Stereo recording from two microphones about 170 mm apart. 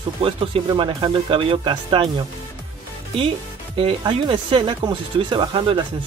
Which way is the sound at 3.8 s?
30° right (ahead or behind).